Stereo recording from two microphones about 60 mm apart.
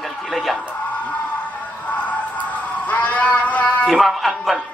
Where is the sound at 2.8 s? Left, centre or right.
Left.